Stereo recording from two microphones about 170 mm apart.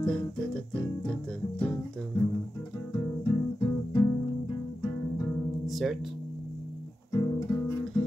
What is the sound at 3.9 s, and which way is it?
Music, 25° left (ahead or behind).